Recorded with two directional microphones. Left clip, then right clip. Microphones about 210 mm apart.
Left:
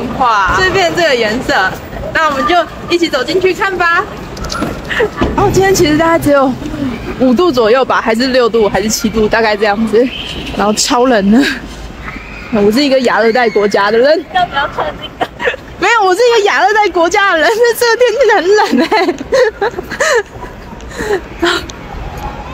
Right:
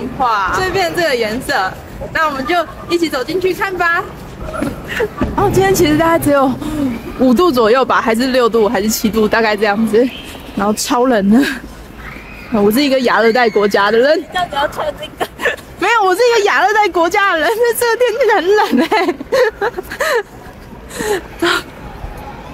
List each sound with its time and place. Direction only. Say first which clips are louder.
0.2 s a woman's voice: left 4 dB; 10° right (ahead or behind)
4.9 s speech: left 5 dB; 5° left (ahead or behind)
5.4 s a woman's voice: left 2 dB; 15° right (ahead or behind)
12.7 s a woman's voice: left 2 dB; 10° right (ahead or behind)
14.3 s speech: left 4 dB; 60° right (ahead or behind)
15.8 s a woman's voice: left 3 dB; 10° right (ahead or behind)
21.0 s a sound: left 2 dB; 5° right (ahead or behind)